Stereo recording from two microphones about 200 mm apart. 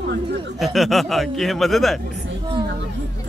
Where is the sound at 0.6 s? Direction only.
Centre (ahead or behind).